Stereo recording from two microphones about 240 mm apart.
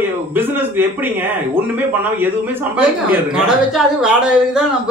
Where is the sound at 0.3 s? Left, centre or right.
Centre.